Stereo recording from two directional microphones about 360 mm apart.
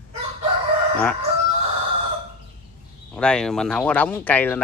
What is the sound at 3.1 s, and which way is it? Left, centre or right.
Speech, centre.